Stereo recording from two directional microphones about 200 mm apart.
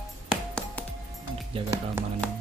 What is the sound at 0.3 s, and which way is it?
Music, 5° left (ahead or behind).